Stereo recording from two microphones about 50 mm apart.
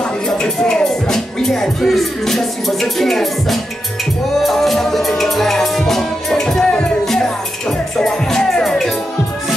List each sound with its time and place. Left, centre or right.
0.4 s music: centre